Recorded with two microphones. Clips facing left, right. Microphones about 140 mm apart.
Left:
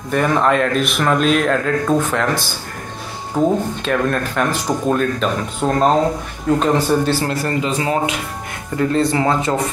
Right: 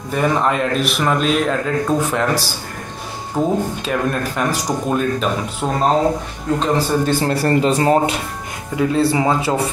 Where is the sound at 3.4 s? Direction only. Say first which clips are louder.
Left 2 dB; centre (ahead or behind).